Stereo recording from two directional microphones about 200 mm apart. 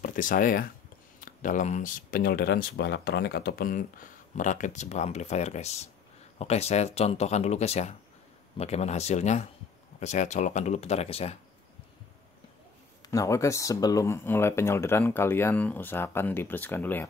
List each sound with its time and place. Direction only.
0.0 s speech: 40° left (ahead or behind)
13.1 s speech: 15° left (ahead or behind)